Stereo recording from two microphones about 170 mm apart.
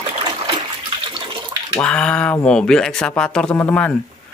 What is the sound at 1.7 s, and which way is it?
Speech, 5° left (ahead or behind).